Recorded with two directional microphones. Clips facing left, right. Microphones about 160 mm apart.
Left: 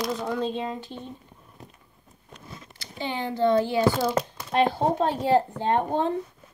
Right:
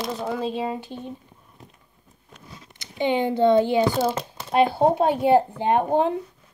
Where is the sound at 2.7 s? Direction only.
20° right (ahead or behind).